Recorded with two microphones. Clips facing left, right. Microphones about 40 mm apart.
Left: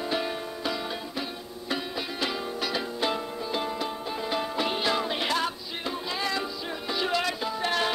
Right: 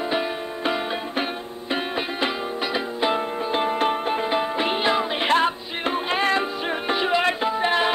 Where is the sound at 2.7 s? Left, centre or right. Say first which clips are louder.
Right 6 dB; right.